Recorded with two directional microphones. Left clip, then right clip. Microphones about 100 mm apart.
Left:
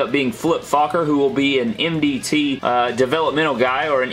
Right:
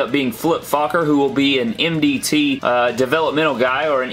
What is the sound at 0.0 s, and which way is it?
Speech, 25° right (ahead or behind).